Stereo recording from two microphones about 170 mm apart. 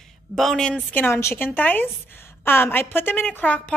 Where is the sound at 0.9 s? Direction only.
15° left (ahead or behind).